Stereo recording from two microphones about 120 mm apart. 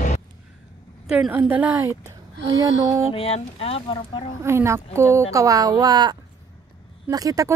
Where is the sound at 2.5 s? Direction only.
30° right (ahead or behind).